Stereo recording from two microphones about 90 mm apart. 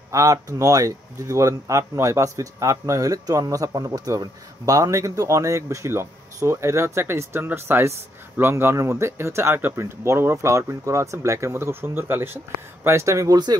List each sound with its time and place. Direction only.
0.1 s speech: 40° right (ahead or behind)